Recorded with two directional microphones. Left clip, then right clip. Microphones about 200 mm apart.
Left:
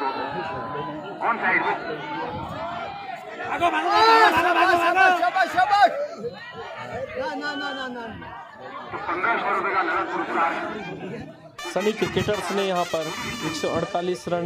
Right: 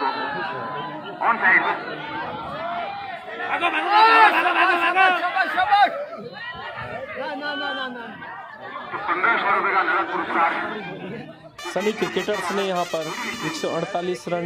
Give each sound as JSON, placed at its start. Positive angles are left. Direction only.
{"t": 0.0, "sound": "chatter", "side_deg": 40}
{"t": 3.5, "sound": "a man's voice", "side_deg": 70}
{"t": 7.4, "sound": "speech", "side_deg": 40}
{"t": 9.0, "sound": "speech", "side_deg": 35}
{"t": 11.7, "sound": "speech", "side_deg": 0}